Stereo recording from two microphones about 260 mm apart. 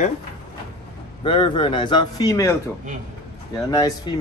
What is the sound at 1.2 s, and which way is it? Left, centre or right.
A man's voice, centre.